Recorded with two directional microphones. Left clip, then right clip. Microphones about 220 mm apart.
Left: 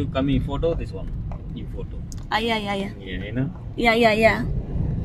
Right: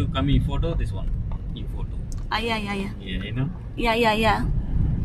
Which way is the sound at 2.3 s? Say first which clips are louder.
Left 3 dB; 10° left (ahead or behind).